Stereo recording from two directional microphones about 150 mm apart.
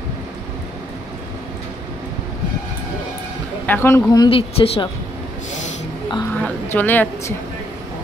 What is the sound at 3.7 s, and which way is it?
Speech, 15° left (ahead or behind).